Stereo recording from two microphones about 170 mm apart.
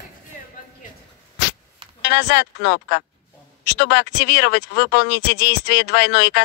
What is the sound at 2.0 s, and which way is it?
Speech, 90° left.